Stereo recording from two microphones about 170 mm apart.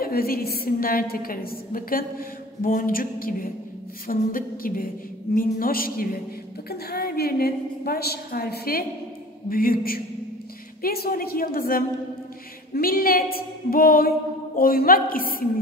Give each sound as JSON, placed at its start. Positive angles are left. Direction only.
{"t": 0.0, "sound": "a woman's voice", "side_deg": 60}